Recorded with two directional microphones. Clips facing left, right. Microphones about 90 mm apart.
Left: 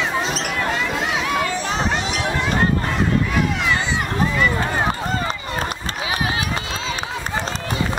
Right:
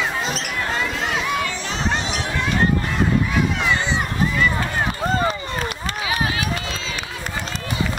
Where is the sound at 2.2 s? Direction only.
35° left (ahead or behind).